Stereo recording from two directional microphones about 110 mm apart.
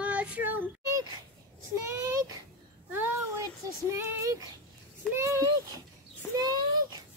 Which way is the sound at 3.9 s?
25° right (ahead or behind).